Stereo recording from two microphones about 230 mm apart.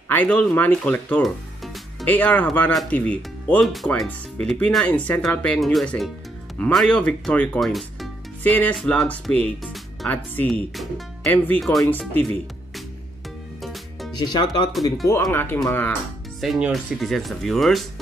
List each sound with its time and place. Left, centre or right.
0.1 s speech: centre
13.6 s music: centre
14.1 s speech: centre
15.9 s speech: centre